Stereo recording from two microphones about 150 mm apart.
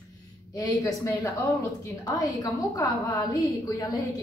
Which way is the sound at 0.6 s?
25° left (ahead or behind).